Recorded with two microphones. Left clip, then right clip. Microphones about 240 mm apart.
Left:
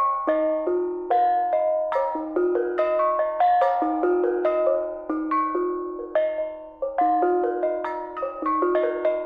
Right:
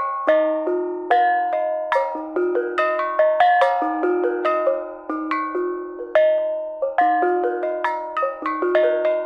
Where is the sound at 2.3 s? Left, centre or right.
Centre.